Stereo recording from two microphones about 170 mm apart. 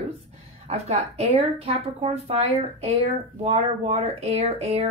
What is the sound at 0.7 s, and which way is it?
Speech, 40° right (ahead or behind).